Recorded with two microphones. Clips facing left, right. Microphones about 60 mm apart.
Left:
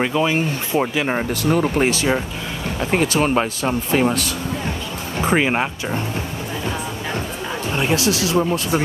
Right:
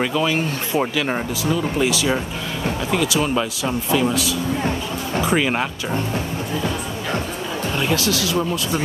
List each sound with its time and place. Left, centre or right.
0.0 s speech: centre
0.7 s speech: centre
1.4 s speech: left
5.3 s speech: left
7.7 s speech: left